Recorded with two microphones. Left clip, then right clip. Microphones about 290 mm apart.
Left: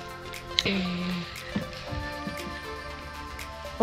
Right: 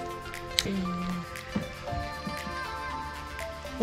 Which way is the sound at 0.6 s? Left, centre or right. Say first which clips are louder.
Left 3 dB; centre.